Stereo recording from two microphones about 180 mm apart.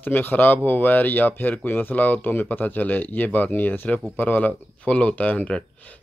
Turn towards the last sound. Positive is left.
turn(degrees=5)  # may be behind; listen again after turning